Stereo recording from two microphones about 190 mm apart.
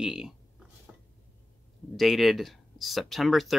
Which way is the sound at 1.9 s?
Centre (ahead or behind).